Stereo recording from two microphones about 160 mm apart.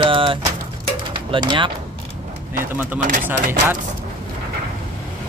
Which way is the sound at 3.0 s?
55° right (ahead or behind).